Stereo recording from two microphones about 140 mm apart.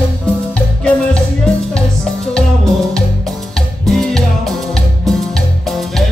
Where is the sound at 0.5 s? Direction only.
5° left (ahead or behind).